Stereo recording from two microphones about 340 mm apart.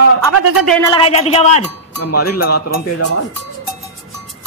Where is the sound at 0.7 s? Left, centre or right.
Centre.